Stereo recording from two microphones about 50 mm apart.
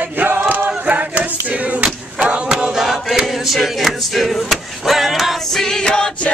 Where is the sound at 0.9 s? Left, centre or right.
Right.